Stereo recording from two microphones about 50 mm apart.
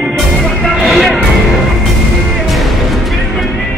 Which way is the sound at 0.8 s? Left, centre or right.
Centre.